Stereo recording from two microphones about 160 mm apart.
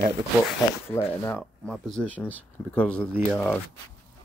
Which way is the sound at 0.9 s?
15° left (ahead or behind).